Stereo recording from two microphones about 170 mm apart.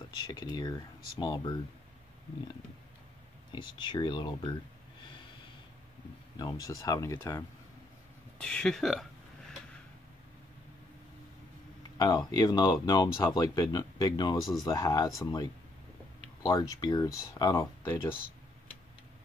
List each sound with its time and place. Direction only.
0.3 s speech: 20° left (ahead or behind)
3.5 s speech: 30° left (ahead or behind)
6.3 s speech: 20° left (ahead or behind)
8.4 s speech: 5° left (ahead or behind)
12.0 s speech: 25° left (ahead or behind)